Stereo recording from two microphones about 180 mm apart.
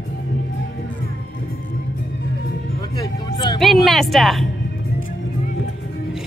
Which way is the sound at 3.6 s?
Centre (ahead or behind).